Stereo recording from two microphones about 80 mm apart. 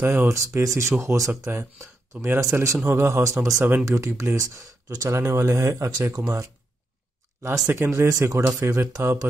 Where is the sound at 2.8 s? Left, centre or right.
Right.